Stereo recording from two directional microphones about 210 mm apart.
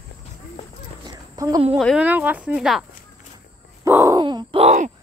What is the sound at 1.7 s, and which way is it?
Speech, centre (ahead or behind).